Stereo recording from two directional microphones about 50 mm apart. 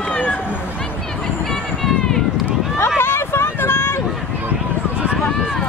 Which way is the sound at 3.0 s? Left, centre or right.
Left.